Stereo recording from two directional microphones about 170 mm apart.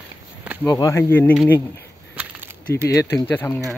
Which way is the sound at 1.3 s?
5° right (ahead or behind).